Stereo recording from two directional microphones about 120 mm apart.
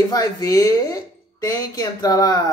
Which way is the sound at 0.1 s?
30° left (ahead or behind).